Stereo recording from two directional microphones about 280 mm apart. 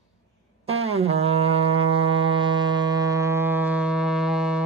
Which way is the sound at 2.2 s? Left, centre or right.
Centre.